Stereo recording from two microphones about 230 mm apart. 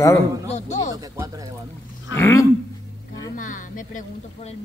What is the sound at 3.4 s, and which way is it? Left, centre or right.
Speech, left.